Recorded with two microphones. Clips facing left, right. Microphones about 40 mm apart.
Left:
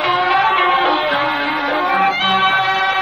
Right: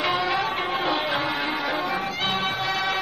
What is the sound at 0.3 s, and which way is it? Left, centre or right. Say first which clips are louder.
Music: left 11 dB; left.